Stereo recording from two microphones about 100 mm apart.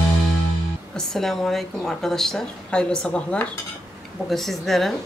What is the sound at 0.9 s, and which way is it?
Speech, 5° left (ahead or behind).